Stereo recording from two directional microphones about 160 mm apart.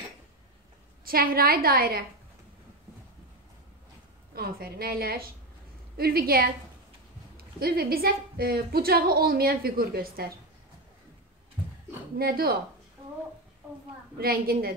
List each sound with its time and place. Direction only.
1.0 s speech: 65° right (ahead or behind)
4.4 s speech: 70° right (ahead or behind)
12.2 s speech: 70° right (ahead or behind)
14.1 s speech: 70° right (ahead or behind)